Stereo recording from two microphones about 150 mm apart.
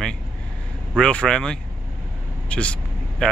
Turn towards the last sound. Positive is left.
turn(degrees=5)  # may be behind; listen again after turning